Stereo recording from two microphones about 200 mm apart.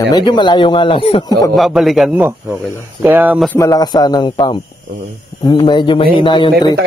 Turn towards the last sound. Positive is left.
turn(degrees=25)  # may be behind; listen again after turning